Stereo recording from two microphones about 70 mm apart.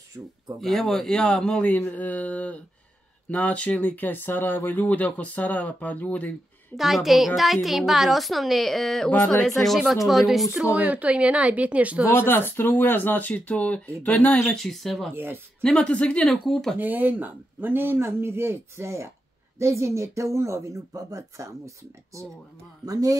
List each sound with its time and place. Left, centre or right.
0.6 s speech: centre
1.7 s speech: left
6.8 s a child's voice: centre
10.6 s a woman's voice: right
12.1 s speech: left
14.4 s a child's voice: centre
15.1 s speech: right
15.6 s speech: centre
16.7 s speech: right
22.8 s speech: right